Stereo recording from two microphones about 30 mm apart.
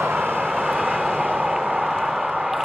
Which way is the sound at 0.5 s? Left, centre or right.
Right.